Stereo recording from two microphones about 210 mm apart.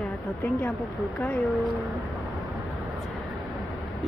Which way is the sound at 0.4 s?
10° left (ahead or behind).